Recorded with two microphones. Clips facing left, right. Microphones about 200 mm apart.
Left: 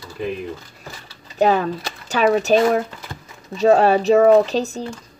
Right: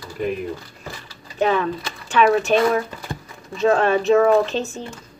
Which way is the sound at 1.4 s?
40° left (ahead or behind).